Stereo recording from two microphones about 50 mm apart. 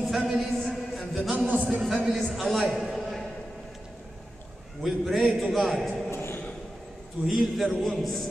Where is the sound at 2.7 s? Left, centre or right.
Centre.